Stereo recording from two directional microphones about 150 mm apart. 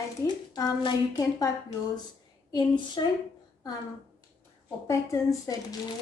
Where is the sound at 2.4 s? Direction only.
30° left (ahead or behind).